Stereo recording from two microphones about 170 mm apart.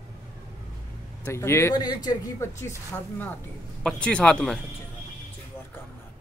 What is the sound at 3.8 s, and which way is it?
Speech, 5° left (ahead or behind).